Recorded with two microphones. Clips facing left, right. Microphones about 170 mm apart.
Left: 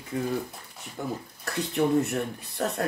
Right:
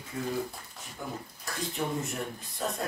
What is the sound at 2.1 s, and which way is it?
Speech, 65° left (ahead or behind).